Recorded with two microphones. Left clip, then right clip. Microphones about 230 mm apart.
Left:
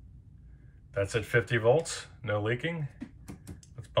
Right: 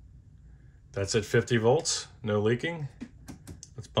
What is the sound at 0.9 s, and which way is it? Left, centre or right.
Speech, right.